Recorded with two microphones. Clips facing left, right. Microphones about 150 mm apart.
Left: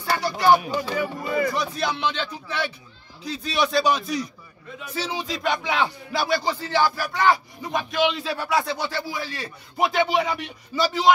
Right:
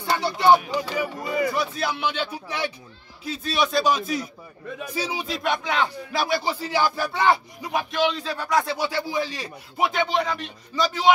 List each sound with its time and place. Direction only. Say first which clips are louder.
0.0 s speech: right 1 dB; 25° right (ahead or behind)
3.3 s speech: even; centre (ahead or behind)
8.0 s speech: left 2 dB; 5° left (ahead or behind)
8.7 s speech: right 3 dB; 10° right (ahead or behind)
9.8 s speech: left 2 dB; centre (ahead or behind)